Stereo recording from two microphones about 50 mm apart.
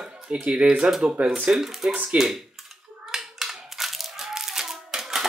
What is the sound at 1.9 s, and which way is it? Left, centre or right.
Speech, right.